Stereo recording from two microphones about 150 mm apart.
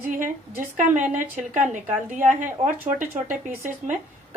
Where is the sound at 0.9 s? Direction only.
60° right (ahead or behind).